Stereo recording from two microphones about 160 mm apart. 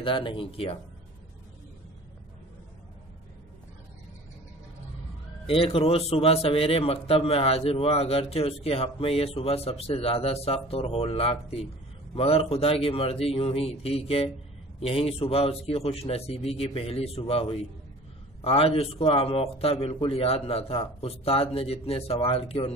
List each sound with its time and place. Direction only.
0.0 s a man's voice: 30° left (ahead or behind)
5.5 s a man's voice: 35° left (ahead or behind)